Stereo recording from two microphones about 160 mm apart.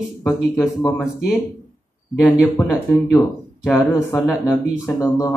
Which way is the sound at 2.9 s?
10° left (ahead or behind).